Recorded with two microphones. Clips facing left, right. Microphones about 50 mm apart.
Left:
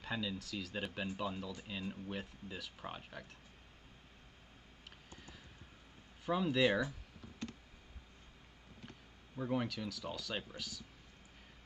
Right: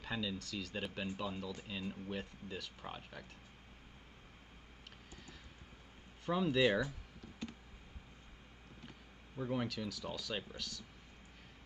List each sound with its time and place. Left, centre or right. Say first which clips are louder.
0.0 s speech: even; centre
6.2 s speech: even; centre
8.8 s speech: left 2 dB; centre